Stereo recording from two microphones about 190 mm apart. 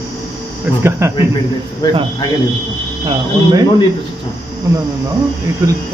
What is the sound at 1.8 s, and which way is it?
Speech, 20° left (ahead or behind).